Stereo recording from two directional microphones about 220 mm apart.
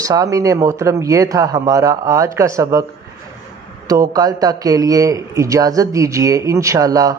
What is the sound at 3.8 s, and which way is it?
A man's voice, 15° right (ahead or behind).